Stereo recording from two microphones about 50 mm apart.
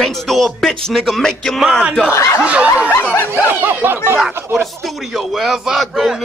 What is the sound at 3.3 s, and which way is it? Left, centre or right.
Speech, right.